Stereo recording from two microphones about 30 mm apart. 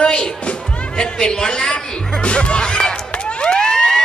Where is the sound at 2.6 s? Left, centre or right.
Left.